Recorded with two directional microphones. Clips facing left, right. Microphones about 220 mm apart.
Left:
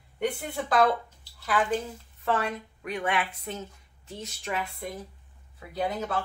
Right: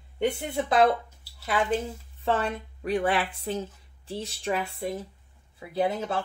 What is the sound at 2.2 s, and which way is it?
Speech, 30° right (ahead or behind).